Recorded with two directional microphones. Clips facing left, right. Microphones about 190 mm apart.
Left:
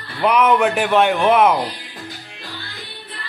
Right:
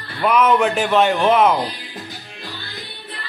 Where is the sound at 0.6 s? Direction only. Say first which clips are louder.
Left 1 dB; 10° left (ahead or behind).